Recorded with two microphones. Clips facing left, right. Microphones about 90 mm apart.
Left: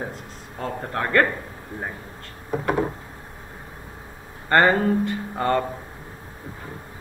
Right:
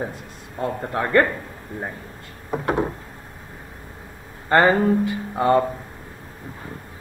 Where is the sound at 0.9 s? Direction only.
15° right (ahead or behind).